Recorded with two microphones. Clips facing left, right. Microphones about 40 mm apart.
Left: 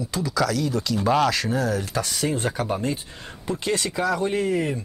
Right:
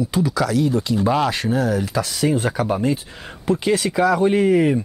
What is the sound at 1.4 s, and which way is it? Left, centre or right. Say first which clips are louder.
Speech: right 4 dB; centre.